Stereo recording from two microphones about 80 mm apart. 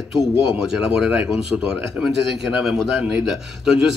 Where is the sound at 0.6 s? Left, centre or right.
Centre.